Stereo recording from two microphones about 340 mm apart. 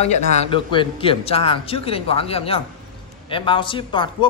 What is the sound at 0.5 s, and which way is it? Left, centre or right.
A man's voice, centre.